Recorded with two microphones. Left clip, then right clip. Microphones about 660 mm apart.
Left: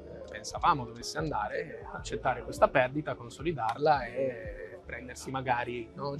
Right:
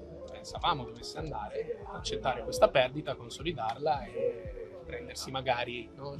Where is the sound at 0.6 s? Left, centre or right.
Left.